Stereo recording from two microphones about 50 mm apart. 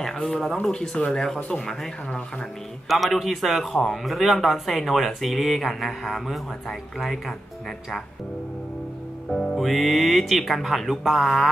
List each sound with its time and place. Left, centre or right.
0.0 s speech: centre
2.9 s a man's voice: centre
9.3 s speech: centre
9.6 s a man's voice: centre